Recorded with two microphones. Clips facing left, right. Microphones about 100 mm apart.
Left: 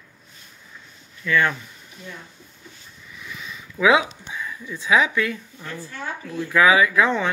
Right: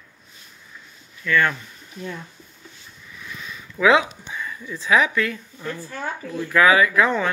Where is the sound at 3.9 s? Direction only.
10° left (ahead or behind).